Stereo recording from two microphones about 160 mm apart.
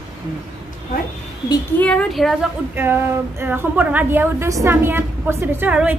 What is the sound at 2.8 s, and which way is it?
A woman's voice, 15° right (ahead or behind).